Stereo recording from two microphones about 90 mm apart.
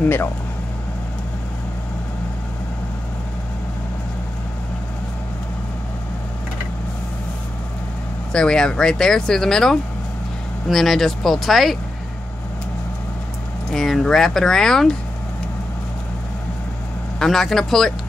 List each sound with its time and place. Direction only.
0.0 s speech: 25° left (ahead or behind)
8.3 s speech: 10° left (ahead or behind)
13.7 s speech: 5° left (ahead or behind)
17.2 s speech: 5° left (ahead or behind)